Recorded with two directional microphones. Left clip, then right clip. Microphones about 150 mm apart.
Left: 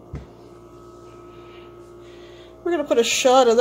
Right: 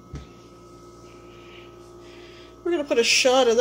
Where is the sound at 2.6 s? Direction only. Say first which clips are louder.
Left 1 dB; 15° left (ahead or behind).